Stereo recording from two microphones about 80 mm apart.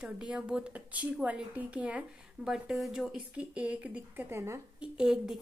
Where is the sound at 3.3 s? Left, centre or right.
Centre.